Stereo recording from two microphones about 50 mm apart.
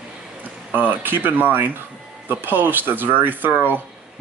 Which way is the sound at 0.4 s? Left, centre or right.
Right.